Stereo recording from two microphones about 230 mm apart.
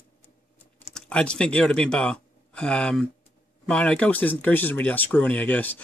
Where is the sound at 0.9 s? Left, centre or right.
Centre.